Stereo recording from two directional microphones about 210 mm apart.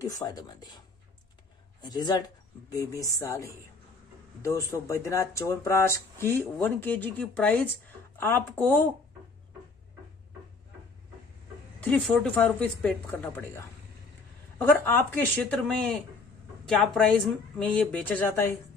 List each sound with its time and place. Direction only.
0.0 s speech: 15° left (ahead or behind)
11.8 s speech: 5° left (ahead or behind)